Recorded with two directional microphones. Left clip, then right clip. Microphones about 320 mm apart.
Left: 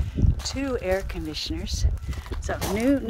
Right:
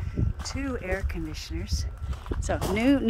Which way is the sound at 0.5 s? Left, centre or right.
Centre.